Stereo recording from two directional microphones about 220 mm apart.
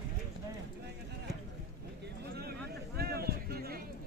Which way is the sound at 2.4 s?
45° right (ahead or behind).